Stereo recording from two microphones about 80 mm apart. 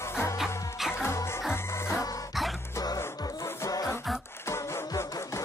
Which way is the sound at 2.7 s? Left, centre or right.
Left.